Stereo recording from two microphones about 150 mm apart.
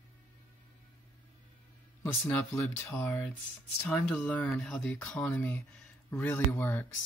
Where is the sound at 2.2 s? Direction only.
20° left (ahead or behind).